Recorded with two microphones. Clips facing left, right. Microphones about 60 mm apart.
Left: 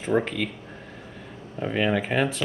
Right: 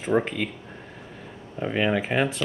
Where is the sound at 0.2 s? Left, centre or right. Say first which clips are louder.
Even; centre.